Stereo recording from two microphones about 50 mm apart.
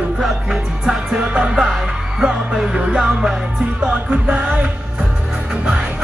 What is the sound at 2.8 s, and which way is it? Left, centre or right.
Music, right.